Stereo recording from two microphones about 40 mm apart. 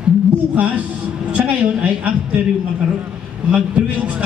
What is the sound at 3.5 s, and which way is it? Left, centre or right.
Speech, right.